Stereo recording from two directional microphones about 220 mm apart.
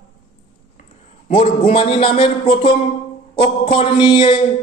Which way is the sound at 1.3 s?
25° left (ahead or behind).